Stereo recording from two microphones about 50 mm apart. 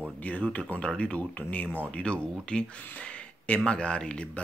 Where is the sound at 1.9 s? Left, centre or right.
Left.